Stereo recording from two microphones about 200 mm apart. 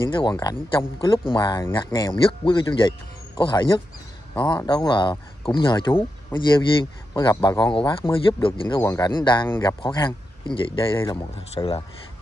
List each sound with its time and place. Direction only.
0.1 s speech: 20° left (ahead or behind)
5.9 s speech: 10° left (ahead or behind)
7.2 s speech: 20° left (ahead or behind)